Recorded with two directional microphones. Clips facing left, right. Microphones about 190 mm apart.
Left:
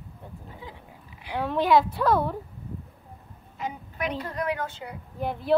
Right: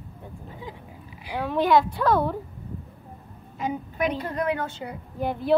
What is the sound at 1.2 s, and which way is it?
Speech, 5° right (ahead or behind).